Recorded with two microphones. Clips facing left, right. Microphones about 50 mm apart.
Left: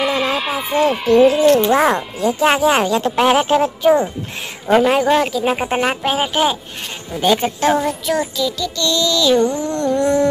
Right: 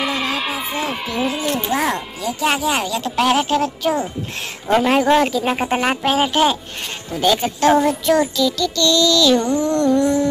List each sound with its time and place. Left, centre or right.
0.0 s a sound: centre
1.3 s speech: centre
1.7 s music: left
3.2 s music: left
4.6 s speech: centre
7.2 s music: left
7.7 s speech: centre
8.4 s music: centre; by 10.2 s left